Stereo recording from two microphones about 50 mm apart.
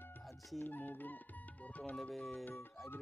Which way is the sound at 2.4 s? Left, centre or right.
Left.